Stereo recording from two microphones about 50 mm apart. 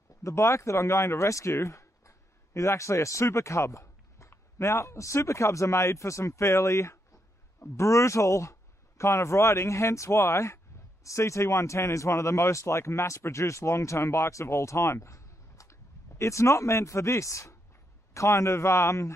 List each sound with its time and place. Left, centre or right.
0.2 s speech: left
11.1 s speech: left